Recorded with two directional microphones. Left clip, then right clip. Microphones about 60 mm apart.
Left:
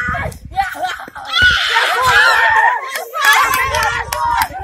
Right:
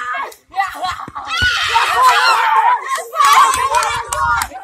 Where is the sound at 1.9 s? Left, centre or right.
Centre.